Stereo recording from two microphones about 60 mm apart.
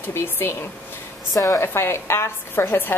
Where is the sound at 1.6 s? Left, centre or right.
Left.